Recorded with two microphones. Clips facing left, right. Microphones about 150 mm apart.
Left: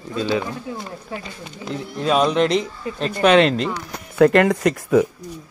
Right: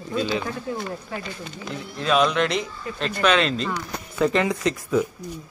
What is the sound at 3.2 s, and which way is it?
Speech, 55° left (ahead or behind).